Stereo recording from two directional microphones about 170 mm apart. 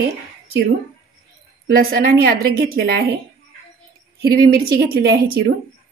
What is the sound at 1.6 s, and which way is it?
A woman's voice, 60° right (ahead or behind).